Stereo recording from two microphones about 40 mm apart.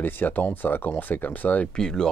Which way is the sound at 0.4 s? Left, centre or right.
Left.